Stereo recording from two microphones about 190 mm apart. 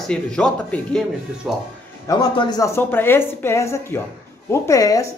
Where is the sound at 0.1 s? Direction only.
5° left (ahead or behind).